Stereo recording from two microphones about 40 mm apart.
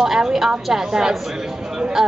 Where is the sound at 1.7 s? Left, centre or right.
Centre.